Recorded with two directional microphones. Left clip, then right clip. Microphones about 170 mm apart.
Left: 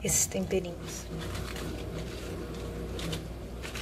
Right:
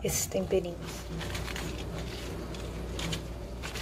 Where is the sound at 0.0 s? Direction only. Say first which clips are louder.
Even; centre (ahead or behind).